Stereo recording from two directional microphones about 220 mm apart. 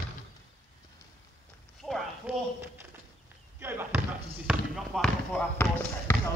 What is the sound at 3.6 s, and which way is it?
Basketball bounce, 10° right (ahead or behind).